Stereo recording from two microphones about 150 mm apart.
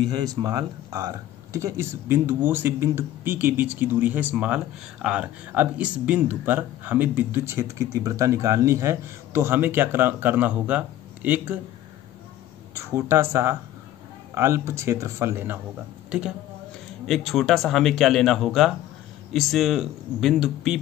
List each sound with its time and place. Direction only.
0.1 s speech: 25° right (ahead or behind)
12.7 s speech: 20° right (ahead or behind); by 20.8 s 5° right (ahead or behind)